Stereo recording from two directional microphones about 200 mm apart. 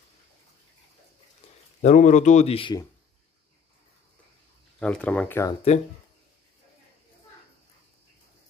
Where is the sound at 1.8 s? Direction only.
40° left (ahead or behind).